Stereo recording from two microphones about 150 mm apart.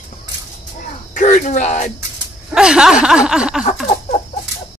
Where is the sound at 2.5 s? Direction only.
5° right (ahead or behind).